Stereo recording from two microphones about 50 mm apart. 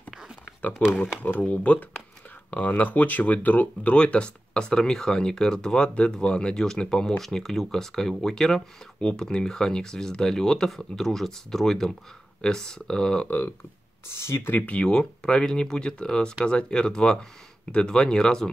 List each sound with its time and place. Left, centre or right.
0.6 s speech: left; by 13.3 s centre
14.0 s speech: left
14.7 s speech: left